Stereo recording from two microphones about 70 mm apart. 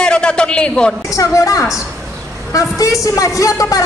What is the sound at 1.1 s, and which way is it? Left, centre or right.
A woman's voice, left.